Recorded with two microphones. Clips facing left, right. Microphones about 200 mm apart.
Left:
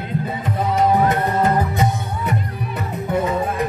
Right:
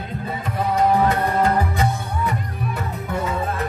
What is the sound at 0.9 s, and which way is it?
Music, 20° left (ahead or behind).